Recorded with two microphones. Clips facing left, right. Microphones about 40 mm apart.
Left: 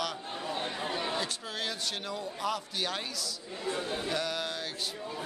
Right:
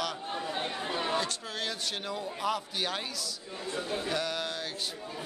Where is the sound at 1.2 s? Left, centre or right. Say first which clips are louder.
Right 2 dB; centre.